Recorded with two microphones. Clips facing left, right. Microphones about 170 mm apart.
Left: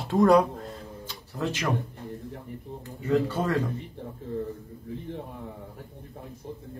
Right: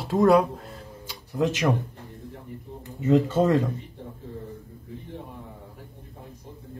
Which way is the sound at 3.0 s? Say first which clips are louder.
Right 5 dB; 20° right (ahead or behind).